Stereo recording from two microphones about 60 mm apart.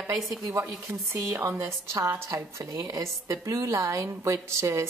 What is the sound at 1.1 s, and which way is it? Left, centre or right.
A woman's voice, right.